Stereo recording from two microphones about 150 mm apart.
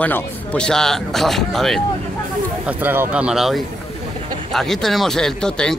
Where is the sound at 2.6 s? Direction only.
15° right (ahead or behind).